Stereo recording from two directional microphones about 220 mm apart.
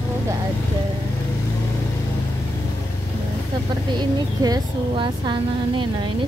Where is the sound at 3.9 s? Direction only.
20° right (ahead or behind).